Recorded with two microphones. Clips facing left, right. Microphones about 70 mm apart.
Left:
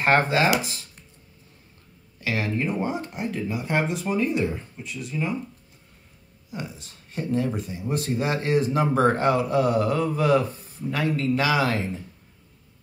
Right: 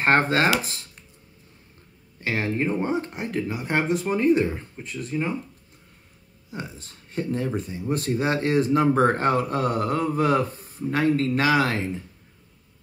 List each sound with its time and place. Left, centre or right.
0.0 s speech: right
2.1 s a man's voice: right
6.5 s a man's voice: right